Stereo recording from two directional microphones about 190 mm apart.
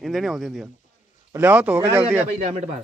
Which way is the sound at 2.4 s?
35° right (ahead or behind).